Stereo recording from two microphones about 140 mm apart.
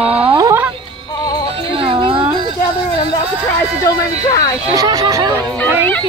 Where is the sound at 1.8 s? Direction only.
35° right (ahead or behind).